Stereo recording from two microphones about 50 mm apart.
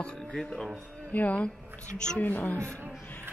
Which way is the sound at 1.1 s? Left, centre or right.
Left.